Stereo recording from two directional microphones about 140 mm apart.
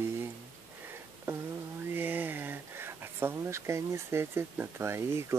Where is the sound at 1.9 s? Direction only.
15° right (ahead or behind).